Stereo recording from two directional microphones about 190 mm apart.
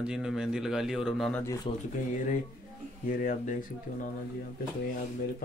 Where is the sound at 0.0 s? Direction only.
5° right (ahead or behind).